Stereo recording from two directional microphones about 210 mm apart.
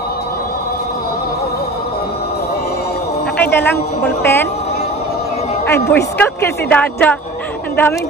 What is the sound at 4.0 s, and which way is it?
Speech, 10° left (ahead or behind).